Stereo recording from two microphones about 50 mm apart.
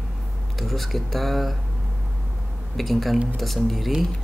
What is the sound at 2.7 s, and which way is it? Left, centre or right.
Speech, centre.